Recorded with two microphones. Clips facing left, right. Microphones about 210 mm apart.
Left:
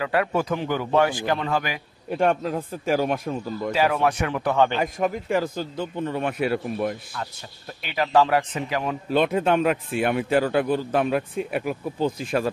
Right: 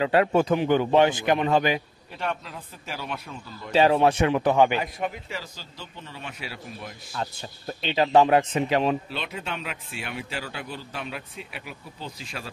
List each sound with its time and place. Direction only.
0.0 s speech: 25° right (ahead or behind)
2.0 s a man's voice: 50° left (ahead or behind)
3.7 s speech: 25° right (ahead or behind)
4.8 s a man's voice: 45° left (ahead or behind)
7.8 s speech: 20° right (ahead or behind)
9.1 s a man's voice: 50° left (ahead or behind)